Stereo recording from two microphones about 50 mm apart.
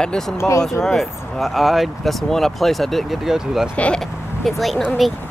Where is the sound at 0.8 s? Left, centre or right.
Centre.